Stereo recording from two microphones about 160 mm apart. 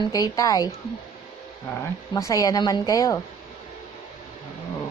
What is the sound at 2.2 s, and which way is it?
A woman's voice, 20° left (ahead or behind).